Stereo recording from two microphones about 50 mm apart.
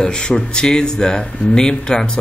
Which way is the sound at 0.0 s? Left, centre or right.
Centre.